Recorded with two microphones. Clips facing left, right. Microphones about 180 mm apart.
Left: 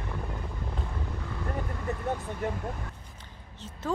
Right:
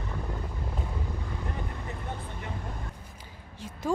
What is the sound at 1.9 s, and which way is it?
Vehicle, 40° left (ahead or behind).